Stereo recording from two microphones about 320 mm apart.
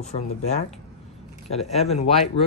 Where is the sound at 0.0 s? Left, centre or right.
Left.